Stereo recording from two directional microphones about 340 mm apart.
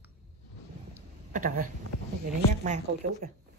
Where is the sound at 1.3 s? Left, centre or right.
Right.